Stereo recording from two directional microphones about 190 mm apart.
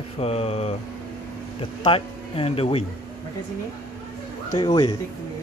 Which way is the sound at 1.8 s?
30° left (ahead or behind).